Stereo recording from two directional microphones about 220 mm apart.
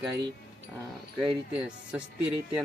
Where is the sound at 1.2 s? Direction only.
5° right (ahead or behind).